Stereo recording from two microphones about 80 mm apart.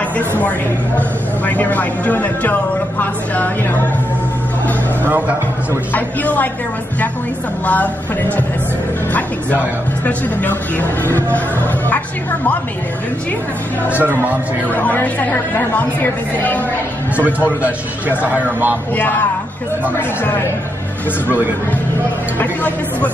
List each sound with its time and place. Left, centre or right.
0.4 s speech: centre
5.9 s speech: left
7.6 s speech: centre
10.0 s speech: left
14.0 s a man's voice: right
14.7 s speech: left
17.2 s a man's voice: right
18.9 s speech: left
22.4 s speech: centre